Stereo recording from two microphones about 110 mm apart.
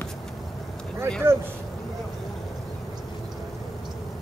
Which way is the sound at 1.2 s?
25° right (ahead or behind).